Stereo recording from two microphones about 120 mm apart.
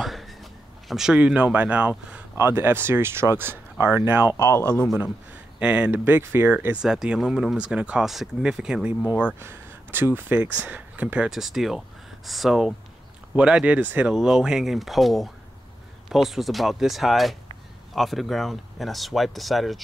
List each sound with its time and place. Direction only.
0.0 s a sound: centre (ahead or behind)
2.3 s speech: 20° right (ahead or behind)
4.4 s speech: 20° left (ahead or behind)
5.6 s speech: 10° right (ahead or behind)
9.2 s speech: 20° right (ahead or behind); by 19.8 s centre (ahead or behind)